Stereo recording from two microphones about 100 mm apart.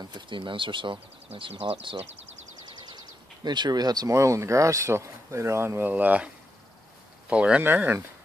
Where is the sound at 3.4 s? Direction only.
45° right (ahead or behind).